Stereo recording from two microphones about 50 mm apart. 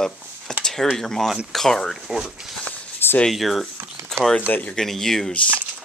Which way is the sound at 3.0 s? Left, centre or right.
Left.